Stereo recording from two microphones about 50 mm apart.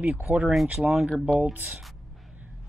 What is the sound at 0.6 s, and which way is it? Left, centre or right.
Speech, centre.